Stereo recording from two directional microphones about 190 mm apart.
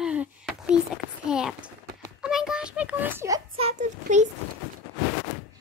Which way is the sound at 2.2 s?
5° right (ahead or behind).